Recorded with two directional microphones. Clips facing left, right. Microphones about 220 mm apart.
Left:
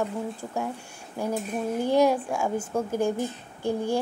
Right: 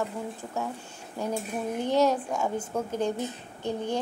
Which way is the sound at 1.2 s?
10° left (ahead or behind).